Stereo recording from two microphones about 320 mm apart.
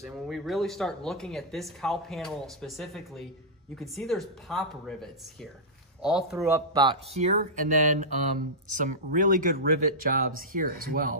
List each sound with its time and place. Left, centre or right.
0.0 s speech: centre; by 11.1 s right